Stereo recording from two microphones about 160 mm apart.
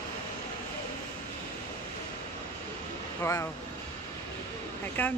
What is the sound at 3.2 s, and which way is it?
Speech, 20° left (ahead or behind).